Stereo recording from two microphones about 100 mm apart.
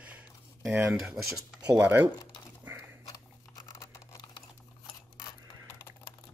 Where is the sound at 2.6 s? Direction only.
15° right (ahead or behind).